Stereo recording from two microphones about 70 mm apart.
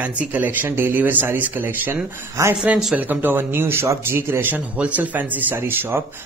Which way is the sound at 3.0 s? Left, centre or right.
Right.